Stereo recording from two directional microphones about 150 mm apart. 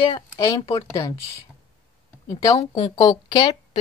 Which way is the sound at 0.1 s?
30° left (ahead or behind).